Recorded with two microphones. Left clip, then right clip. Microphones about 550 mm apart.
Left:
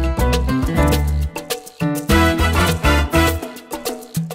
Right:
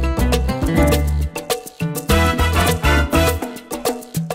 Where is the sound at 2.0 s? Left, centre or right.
Right.